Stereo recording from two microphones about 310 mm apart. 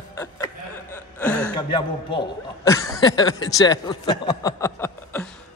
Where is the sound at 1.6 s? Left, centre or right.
Centre.